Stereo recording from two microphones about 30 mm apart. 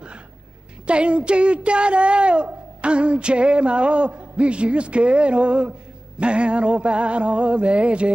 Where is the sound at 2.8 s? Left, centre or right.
Right.